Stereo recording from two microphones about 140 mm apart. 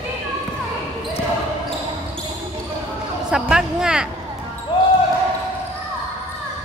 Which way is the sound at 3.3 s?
5° right (ahead or behind).